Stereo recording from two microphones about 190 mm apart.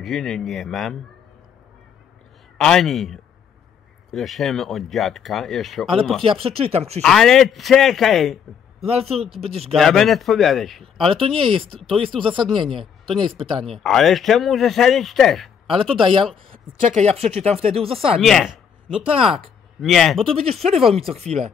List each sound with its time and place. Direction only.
0.0 s speech: centre (ahead or behind)
2.5 s speech: centre (ahead or behind)
6.4 s speech: 30° right (ahead or behind)
7.0 s speech: centre (ahead or behind)
8.8 s speech: 30° right (ahead or behind)
9.8 s speech: centre (ahead or behind)
11.1 s speech: 30° right (ahead or behind)
13.7 s speech: centre (ahead or behind)
15.6 s speech: 30° right (ahead or behind)
18.2 s speech: centre (ahead or behind)
19.0 s speech: 30° right (ahead or behind)
19.8 s speech: centre (ahead or behind)
20.2 s speech: 30° right (ahead or behind)